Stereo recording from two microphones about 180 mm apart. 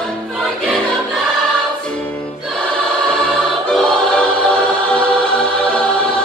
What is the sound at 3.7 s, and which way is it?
Choir, 5° left (ahead or behind).